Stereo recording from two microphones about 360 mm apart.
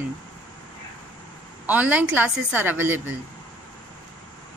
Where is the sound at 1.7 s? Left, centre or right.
Centre.